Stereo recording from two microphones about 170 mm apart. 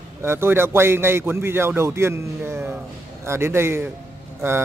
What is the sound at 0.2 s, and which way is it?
A man's voice, 15° right (ahead or behind).